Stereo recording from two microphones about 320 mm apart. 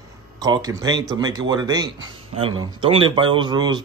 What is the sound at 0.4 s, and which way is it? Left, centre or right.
Speech, centre.